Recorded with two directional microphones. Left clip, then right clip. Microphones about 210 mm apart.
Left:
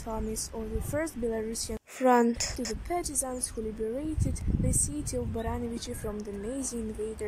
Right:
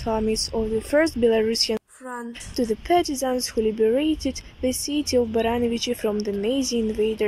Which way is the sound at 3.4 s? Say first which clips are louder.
Right 13 dB; 35° right (ahead or behind).